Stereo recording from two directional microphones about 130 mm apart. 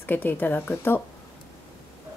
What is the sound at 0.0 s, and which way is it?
A woman's voice, 15° left (ahead or behind).